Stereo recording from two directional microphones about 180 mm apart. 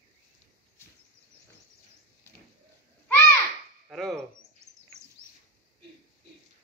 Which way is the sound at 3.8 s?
Centre (ahead or behind).